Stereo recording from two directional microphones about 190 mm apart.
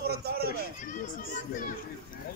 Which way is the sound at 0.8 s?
45° left (ahead or behind).